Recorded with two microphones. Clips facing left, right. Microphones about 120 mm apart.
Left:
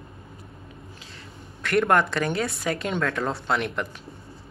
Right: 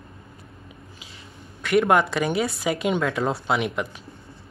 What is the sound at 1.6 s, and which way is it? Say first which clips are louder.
Speech: right 2 dB; 5° right (ahead or behind).